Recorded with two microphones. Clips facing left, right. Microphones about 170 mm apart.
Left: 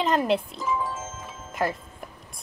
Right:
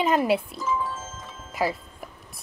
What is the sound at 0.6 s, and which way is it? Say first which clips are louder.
Music: even; 15° left (ahead or behind).